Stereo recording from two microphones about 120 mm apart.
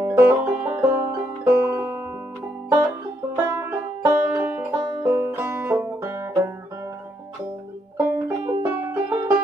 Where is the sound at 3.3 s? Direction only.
20° right (ahead or behind).